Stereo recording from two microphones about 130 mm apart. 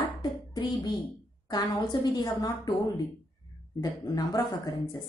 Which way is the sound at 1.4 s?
30° left (ahead or behind).